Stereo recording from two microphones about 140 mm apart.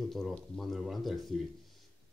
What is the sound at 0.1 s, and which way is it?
Speech, centre (ahead or behind).